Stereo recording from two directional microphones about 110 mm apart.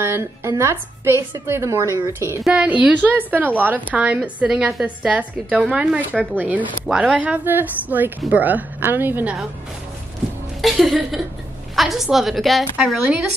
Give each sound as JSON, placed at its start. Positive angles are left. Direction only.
{"t": 0.0, "sound": "a woman's voice", "side_deg": -25}
{"t": 2.4, "sound": "a woman's voice", "side_deg": -10}
{"t": 10.6, "sound": "a woman's voice", "side_deg": 0}